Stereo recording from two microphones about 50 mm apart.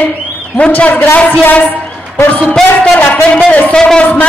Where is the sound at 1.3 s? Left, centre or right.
Left.